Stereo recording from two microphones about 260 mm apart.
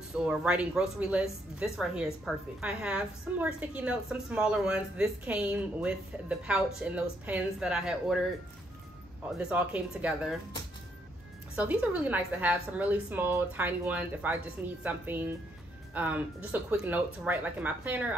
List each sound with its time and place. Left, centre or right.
0.1 s a woman's voice: centre
9.4 s a woman's voice: centre
11.5 s a woman's voice: centre